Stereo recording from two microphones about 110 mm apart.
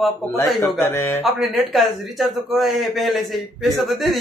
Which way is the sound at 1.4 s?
Centre (ahead or behind).